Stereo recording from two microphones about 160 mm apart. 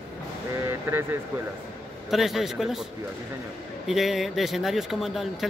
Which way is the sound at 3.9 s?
Centre (ahead or behind).